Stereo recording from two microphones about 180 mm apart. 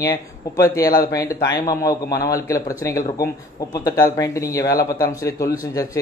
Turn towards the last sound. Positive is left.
turn(degrees=20)  # may be behind; listen again after turning